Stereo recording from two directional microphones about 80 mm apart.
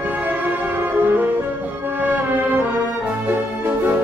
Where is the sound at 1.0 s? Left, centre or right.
Right.